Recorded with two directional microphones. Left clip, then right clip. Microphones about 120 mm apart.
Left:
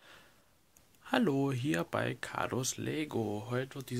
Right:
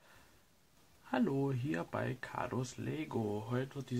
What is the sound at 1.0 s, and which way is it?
Speech, 40° left (ahead or behind).